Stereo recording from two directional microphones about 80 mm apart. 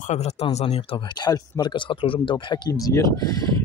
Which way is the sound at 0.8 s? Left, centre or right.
Left.